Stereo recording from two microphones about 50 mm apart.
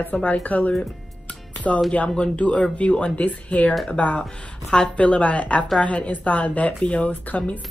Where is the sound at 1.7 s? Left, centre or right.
Centre.